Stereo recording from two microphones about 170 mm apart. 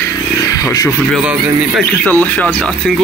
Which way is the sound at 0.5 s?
20° left (ahead or behind).